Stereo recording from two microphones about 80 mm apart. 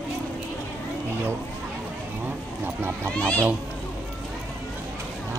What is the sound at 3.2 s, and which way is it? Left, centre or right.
Speech, centre.